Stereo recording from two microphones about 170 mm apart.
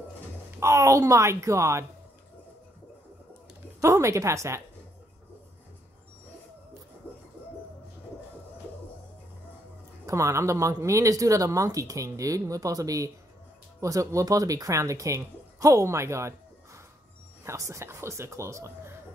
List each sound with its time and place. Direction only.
0.6 s speech: 20° right (ahead or behind)
3.8 s speech: 15° right (ahead or behind)
10.0 s speech: 15° right (ahead or behind)